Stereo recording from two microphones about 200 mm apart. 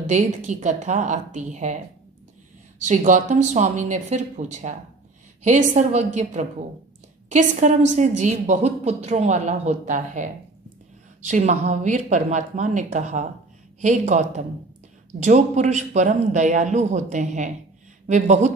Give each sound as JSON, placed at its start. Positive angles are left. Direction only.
{"t": 0.1, "sound": "a woman's voice", "side_deg": -40}
{"t": 2.8, "sound": "a woman's voice", "side_deg": -40}